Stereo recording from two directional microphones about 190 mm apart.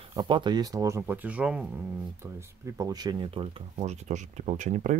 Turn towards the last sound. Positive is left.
turn(degrees=-35)  # may be behind; listen again after turning